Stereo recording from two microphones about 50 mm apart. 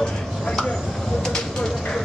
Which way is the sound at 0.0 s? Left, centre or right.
Centre.